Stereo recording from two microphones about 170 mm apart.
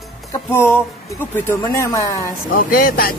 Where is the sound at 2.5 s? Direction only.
60° left (ahead or behind).